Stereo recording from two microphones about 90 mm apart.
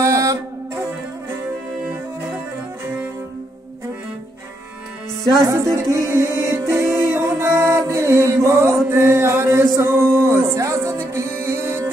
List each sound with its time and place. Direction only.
0.0 s music: 35° right (ahead or behind)
5.4 s music: 30° right (ahead or behind)
8.8 s a sound: 30° right (ahead or behind)